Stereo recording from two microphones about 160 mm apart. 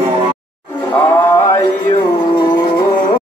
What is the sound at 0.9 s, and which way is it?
Music, 15° left (ahead or behind).